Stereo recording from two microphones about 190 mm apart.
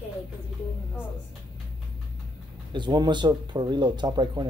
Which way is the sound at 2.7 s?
25° right (ahead or behind).